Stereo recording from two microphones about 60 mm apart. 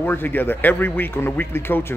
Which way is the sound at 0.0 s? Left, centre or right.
Left.